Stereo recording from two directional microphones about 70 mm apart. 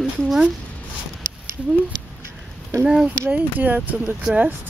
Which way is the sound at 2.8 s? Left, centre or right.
Centre.